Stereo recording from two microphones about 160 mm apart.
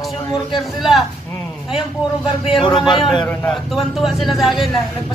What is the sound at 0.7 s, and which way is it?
Speech, centre (ahead or behind).